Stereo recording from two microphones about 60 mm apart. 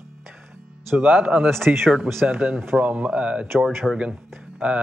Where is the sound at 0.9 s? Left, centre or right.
Right.